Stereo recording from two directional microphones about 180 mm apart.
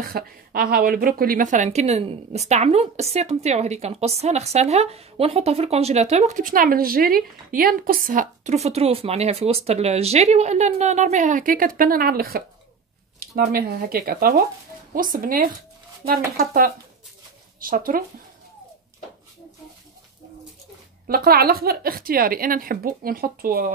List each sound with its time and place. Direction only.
0.0 s a woman's voice: 55° right (ahead or behind)
13.5 s speech: 55° right (ahead or behind)
21.1 s speech: 55° right (ahead or behind)